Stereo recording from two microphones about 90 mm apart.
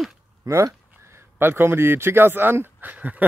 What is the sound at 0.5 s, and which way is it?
A man's voice, 35° right (ahead or behind).